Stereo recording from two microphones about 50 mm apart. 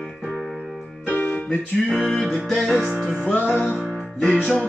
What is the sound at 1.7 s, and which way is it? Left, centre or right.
Music, centre.